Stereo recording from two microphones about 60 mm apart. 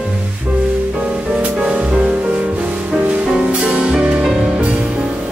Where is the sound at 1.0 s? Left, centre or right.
Centre.